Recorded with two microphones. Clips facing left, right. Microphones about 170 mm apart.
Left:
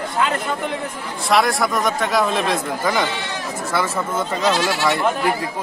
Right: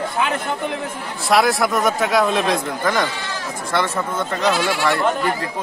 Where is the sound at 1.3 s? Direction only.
Centre (ahead or behind).